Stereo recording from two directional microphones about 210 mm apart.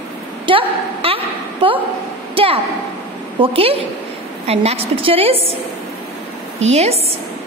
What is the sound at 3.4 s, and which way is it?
A woman's voice, 25° right (ahead or behind).